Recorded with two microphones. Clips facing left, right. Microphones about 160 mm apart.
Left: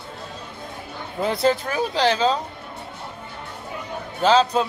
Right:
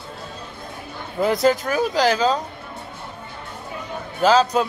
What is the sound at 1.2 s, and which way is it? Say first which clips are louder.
Speech: right 3 dB; 30° left (ahead or behind).